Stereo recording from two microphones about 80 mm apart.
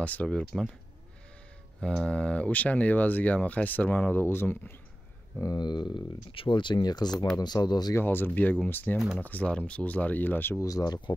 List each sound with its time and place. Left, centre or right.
0.0 s speech: centre
1.8 s speech: centre; by 4.7 s left
5.4 s speech: left
7.9 s speech: left
10.6 s speech: left